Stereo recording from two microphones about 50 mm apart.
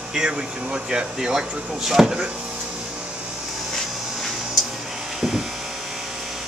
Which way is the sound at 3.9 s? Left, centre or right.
Centre.